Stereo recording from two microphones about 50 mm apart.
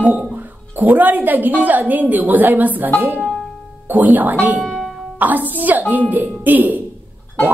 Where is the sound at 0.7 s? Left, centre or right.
Right.